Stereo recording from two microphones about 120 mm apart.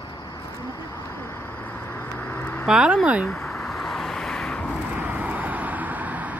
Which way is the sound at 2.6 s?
5° right (ahead or behind).